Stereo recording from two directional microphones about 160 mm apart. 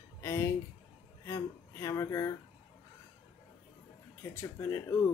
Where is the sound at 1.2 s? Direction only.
15° left (ahead or behind).